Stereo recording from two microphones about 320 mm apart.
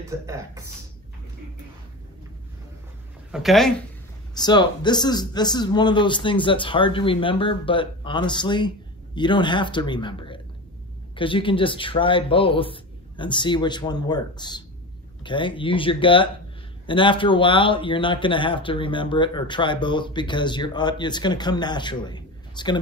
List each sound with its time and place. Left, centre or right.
3.3 s speech: centre
4.4 s a man's voice: centre